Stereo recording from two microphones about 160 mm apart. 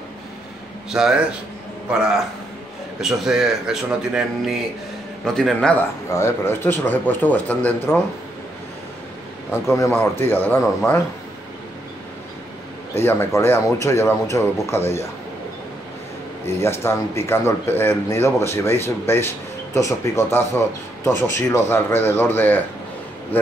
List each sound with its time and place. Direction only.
0.8 s speech: 5° right (ahead or behind)
9.5 s speech: 15° left (ahead or behind)
12.9 s speech: 15° left (ahead or behind)
16.4 s speech: 15° left (ahead or behind)